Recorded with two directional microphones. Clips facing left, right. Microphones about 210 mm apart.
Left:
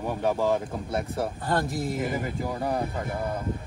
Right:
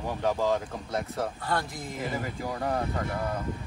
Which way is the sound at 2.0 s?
15° left (ahead or behind).